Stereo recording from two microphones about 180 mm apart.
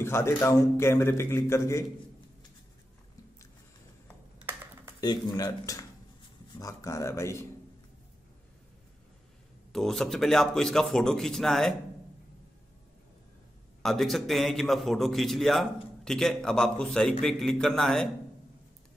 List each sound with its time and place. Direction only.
0.0 s a man's voice: 15° left (ahead or behind)
5.0 s a man's voice: 20° left (ahead or behind)
9.7 s a man's voice: centre (ahead or behind)
13.8 s a man's voice: centre (ahead or behind)